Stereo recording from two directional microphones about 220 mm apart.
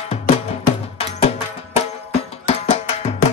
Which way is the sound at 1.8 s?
30° left (ahead or behind).